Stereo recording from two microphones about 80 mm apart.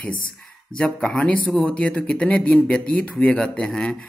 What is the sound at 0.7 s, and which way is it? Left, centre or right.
Speech, centre.